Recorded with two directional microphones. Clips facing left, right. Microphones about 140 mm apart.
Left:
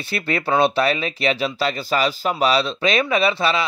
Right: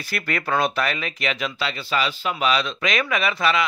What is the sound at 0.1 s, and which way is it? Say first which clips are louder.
Speech: left 4 dB; 30° left (ahead or behind).